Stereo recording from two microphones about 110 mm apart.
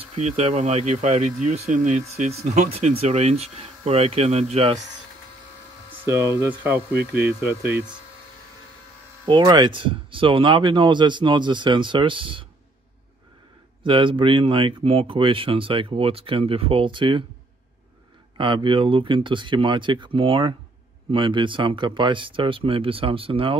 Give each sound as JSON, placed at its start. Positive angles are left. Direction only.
{"t": 0.0, "sound": "speech", "side_deg": -70}
{"t": 6.0, "sound": "speech", "side_deg": -30}
{"t": 6.6, "sound": "speech", "side_deg": -20}
{"t": 9.2, "sound": "speech", "side_deg": -40}
{"t": 13.8, "sound": "speech", "side_deg": -50}
{"t": 18.4, "sound": "speech", "side_deg": -50}